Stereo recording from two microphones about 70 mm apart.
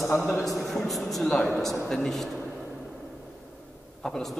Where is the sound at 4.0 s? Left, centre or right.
Centre.